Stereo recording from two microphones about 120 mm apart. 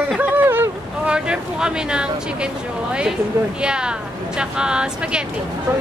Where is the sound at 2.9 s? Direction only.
10° right (ahead or behind).